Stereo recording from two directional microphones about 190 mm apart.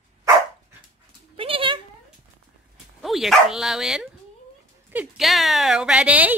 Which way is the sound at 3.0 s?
Centre (ahead or behind).